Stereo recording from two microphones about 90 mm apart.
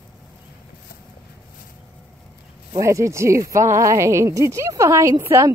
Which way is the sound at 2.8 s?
35° right (ahead or behind).